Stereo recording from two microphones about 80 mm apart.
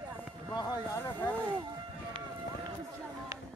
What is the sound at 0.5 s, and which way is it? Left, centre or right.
Speech, left.